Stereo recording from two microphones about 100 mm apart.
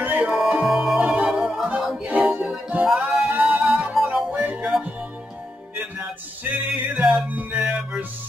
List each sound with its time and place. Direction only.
0.0 s music: 15° right (ahead or behind)
0.3 s music: centre (ahead or behind)
6.5 s music: 15° right (ahead or behind)